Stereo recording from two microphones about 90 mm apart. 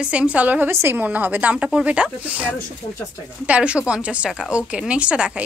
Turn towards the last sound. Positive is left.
turn(degrees=-10)  # may be behind; listen again after turning